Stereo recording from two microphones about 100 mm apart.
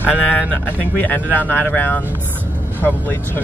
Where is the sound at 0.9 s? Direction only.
15° left (ahead or behind).